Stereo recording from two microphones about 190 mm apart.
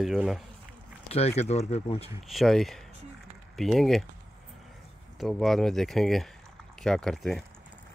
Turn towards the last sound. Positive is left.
turn(degrees=0)  # may be behind; listen again after turning